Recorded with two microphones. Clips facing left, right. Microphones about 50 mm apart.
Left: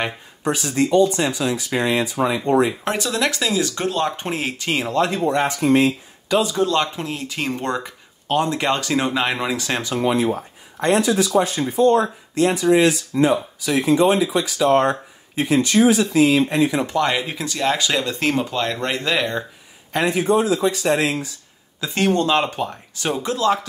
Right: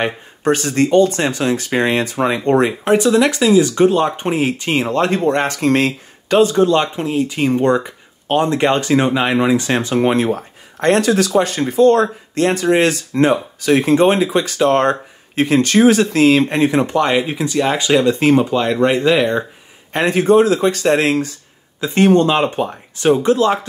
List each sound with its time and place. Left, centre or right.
0.4 s speech: right
2.8 s speech: right
4.9 s speech: right
5.5 s speech: right
6.5 s speech: right
9.9 s speech: right
16.9 s speech: centre
19.9 s speech: right
20.2 s speech: right
21.7 s speech: right
23.1 s speech: right